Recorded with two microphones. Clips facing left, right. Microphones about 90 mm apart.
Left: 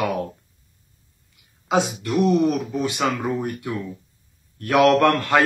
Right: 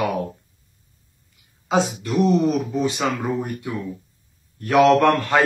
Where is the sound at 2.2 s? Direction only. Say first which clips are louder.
Even; centre (ahead or behind).